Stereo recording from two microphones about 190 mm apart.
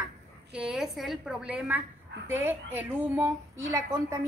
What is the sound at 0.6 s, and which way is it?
A woman's voice, centre (ahead or behind).